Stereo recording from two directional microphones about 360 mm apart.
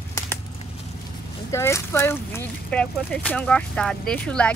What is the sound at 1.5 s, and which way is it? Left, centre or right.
Speech, centre.